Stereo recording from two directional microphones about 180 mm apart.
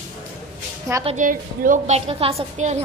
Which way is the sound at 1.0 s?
45° right (ahead or behind).